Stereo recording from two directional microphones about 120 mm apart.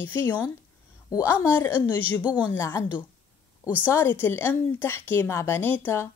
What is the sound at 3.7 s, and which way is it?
Speech, 15° left (ahead or behind).